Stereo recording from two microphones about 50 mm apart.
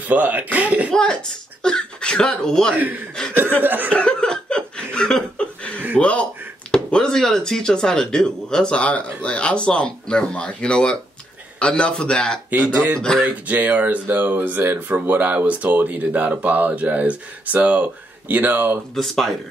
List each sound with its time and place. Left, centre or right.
0.1 s speech: right
1.6 s speech: centre
2.7 s speech: right
3.9 s chuckle: centre
5.9 s speech: left
6.7 s a man's voice: centre
12.4 s speech: right
12.9 s a man's voice: centre
13.2 s speech: right
18.3 s speech: right
18.9 s speech: centre